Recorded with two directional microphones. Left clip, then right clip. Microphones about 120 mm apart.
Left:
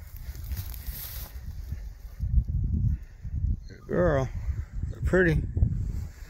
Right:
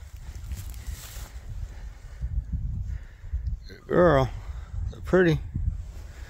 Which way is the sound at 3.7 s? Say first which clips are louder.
Right 6 dB; 85° right.